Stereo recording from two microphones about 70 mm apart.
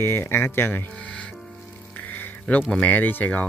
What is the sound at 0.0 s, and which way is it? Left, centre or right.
Speech, left.